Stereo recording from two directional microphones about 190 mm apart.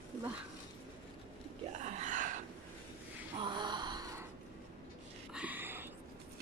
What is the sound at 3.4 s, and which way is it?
Gasp, 25° right (ahead or behind).